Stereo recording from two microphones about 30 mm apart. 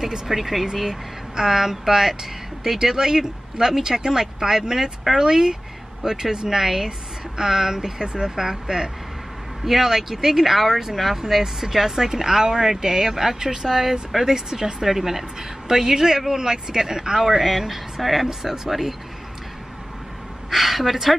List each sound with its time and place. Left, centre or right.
0.0 s speech: centre
20.4 s speech: centre